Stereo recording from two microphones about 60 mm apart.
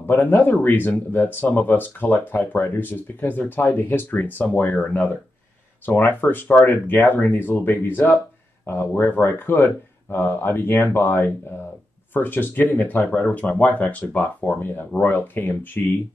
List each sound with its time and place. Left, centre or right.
0.0 s speech: left
4.7 s speech: left
5.9 s speech: left